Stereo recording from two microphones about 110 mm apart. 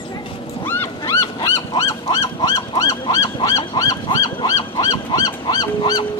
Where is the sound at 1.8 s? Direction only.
30° left (ahead or behind).